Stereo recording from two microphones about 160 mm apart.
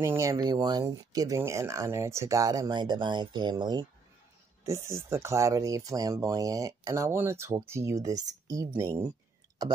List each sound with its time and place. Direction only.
0.0 s speech: 15° right (ahead or behind)